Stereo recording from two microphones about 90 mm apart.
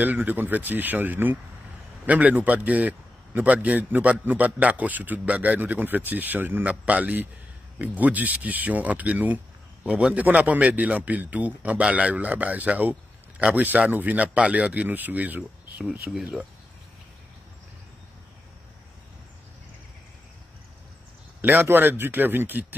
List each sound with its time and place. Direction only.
0.0 s a man's voice: 20° right (ahead or behind)
21.4 s speech: 20° right (ahead or behind)